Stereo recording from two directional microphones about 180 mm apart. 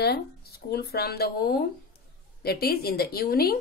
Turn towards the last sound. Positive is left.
turn(degrees=60)  # may be behind; listen again after turning